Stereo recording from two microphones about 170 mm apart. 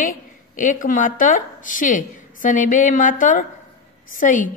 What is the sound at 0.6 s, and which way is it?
A woman's voice, 50° left (ahead or behind).